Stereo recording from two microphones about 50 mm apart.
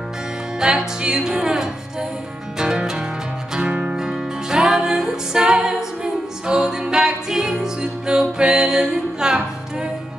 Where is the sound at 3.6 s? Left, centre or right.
Right.